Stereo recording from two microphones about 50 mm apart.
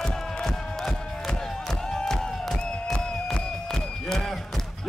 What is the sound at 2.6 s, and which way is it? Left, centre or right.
Music, centre.